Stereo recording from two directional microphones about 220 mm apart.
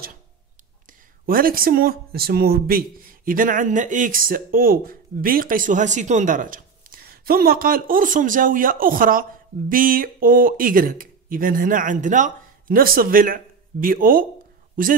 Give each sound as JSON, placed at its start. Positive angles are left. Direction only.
{"t": 1.2, "sound": "speech", "side_deg": -40}